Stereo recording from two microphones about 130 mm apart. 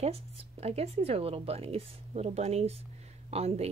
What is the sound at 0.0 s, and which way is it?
Speech, 50° right (ahead or behind).